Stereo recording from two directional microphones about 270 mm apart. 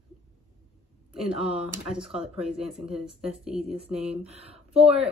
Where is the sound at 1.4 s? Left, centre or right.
Centre.